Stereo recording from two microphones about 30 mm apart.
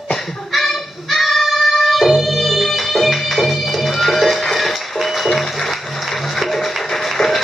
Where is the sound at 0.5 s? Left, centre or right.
Centre.